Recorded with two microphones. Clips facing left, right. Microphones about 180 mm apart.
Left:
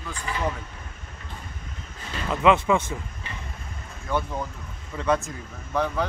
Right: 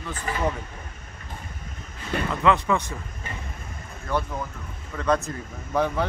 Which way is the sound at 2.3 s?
15° left (ahead or behind).